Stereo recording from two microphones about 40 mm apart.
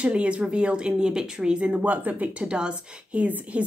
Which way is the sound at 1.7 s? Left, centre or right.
Right.